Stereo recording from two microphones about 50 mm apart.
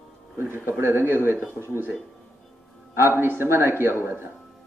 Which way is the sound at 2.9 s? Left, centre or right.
Right.